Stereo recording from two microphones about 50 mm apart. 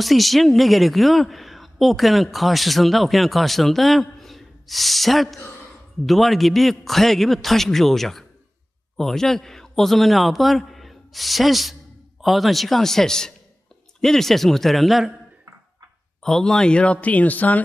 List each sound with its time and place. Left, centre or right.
0.0 s a man's voice: centre
16.2 s speech: centre; by 17.6 s left